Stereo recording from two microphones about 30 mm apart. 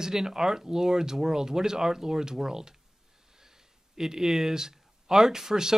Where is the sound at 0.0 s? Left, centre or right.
Centre.